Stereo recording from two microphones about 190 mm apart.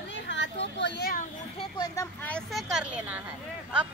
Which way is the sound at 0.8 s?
55° left (ahead or behind).